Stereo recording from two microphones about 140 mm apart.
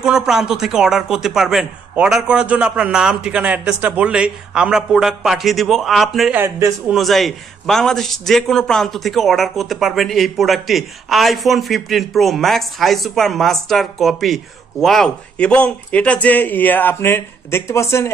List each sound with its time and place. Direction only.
0.0 s a man's voice: 5° right (ahead or behind)
6.3 s speech: 15° right (ahead or behind)
6.9 s a man's voice: centre (ahead or behind); by 18.1 s 20° left (ahead or behind)